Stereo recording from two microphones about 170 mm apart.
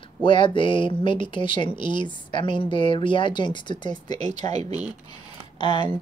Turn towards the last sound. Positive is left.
turn(degrees=30)  # may be behind; listen again after turning